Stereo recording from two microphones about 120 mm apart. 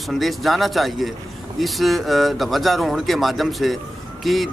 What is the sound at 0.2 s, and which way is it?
Speech, centre (ahead or behind).